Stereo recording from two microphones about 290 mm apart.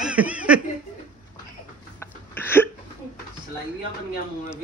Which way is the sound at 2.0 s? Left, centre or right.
Centre.